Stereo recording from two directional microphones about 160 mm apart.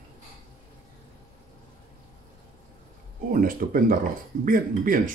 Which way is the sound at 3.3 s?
65° right (ahead or behind).